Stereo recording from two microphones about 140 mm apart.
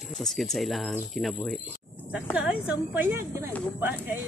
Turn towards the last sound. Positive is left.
turn(degrees=-15)  # may be behind; listen again after turning